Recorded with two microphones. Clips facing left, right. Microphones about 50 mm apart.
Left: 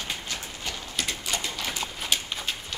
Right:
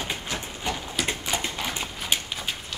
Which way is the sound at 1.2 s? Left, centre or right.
Centre.